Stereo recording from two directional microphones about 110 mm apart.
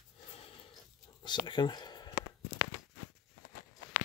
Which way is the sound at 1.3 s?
45° left (ahead or behind).